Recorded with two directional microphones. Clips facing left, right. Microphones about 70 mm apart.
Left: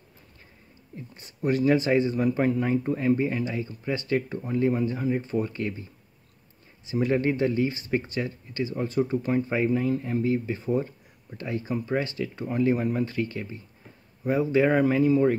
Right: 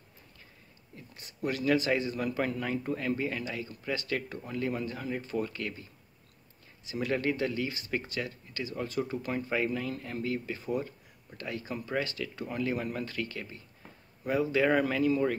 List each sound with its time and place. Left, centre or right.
0.9 s speech: left
6.9 s speech: left